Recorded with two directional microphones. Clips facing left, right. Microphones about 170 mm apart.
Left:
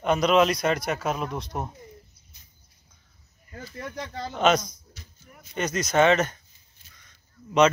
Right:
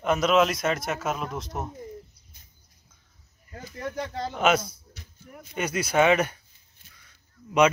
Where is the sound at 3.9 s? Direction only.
5° right (ahead or behind).